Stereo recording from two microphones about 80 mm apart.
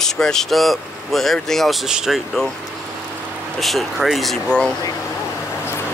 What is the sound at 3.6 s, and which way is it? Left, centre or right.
Speech, centre.